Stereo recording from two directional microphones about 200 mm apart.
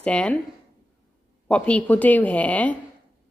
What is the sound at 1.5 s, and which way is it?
Speech, 5° left (ahead or behind).